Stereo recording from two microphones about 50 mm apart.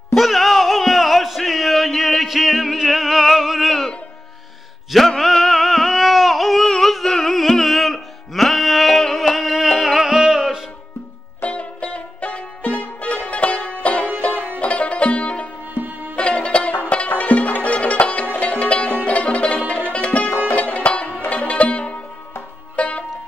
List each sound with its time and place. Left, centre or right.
0.1 s music: centre
4.9 s music: centre
11.4 s music: left
15.7 s music: right
16.2 s music: left